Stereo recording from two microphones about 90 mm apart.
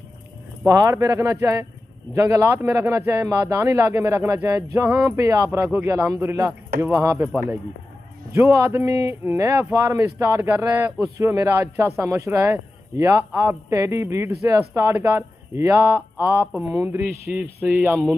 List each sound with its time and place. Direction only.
0.7 s speech: 40° right (ahead or behind)
4.5 s speech: 35° right (ahead or behind)
8.4 s speech: 35° right (ahead or behind)
11.0 s speech: 35° right (ahead or behind)
13.3 s speech: 20° right (ahead or behind)
13.7 s speech: 35° right (ahead or behind)
17.0 s speech: 20° right (ahead or behind)